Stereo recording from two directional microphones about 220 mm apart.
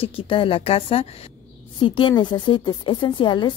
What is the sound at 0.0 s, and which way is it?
A woman's voice, 25° left (ahead or behind).